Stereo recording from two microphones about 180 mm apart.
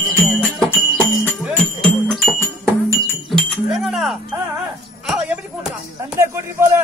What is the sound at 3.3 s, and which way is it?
Chink, centre (ahead or behind).